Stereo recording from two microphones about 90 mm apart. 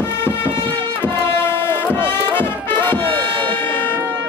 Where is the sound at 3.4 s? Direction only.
20° left (ahead or behind).